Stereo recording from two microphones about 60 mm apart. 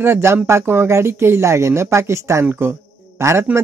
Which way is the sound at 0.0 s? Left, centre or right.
Right.